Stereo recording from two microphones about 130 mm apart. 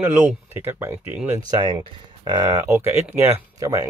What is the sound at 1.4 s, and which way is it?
Speech, 30° right (ahead or behind).